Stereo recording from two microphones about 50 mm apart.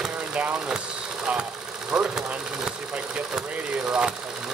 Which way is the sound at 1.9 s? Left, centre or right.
Right.